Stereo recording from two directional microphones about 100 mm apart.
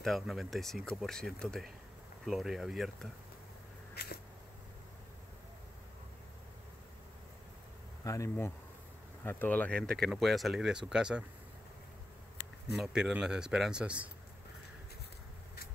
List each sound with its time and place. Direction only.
0.0 s speech: centre (ahead or behind)
8.0 s speech: 30° left (ahead or behind); by 11.2 s 10° right (ahead or behind)
12.7 s speech: 5° right (ahead or behind)